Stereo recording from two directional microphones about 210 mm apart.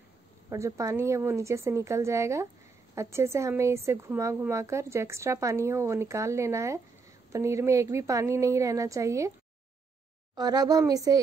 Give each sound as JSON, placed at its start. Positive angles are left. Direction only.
{"t": 0.5, "sound": "speech", "side_deg": -15}
{"t": 10.3, "sound": "a woman's voice", "side_deg": -20}